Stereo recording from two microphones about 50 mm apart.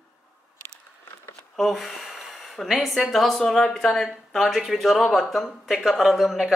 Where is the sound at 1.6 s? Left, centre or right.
Centre.